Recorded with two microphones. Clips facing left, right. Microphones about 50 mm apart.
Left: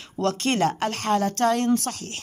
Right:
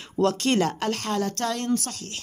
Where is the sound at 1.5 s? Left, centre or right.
Left.